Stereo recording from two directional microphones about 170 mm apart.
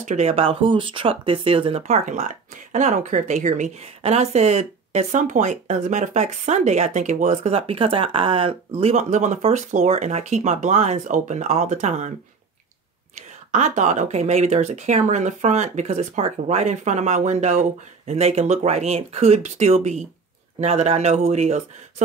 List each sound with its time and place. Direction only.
0.0 s speech: 40° right (ahead or behind)
13.5 s speech: 45° right (ahead or behind)